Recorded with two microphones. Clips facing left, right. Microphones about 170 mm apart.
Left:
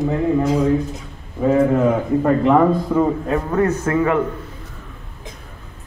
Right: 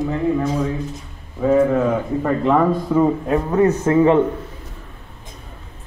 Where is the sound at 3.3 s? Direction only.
15° right (ahead or behind).